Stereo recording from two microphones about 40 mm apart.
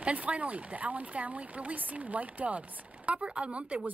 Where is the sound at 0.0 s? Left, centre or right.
Right.